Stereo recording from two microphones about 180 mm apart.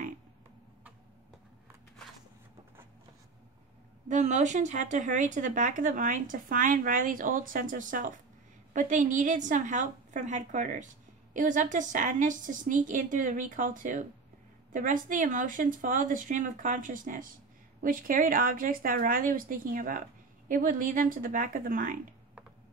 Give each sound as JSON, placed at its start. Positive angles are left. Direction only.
{"t": 4.1, "sound": "a woman's voice", "side_deg": -40}